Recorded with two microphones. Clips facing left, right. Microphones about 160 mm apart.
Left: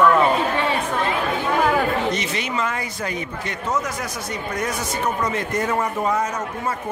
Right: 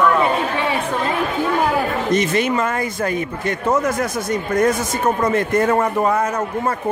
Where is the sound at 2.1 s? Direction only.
50° right (ahead or behind).